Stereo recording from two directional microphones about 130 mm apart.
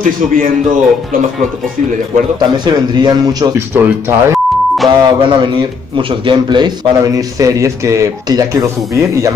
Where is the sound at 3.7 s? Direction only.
20° right (ahead or behind).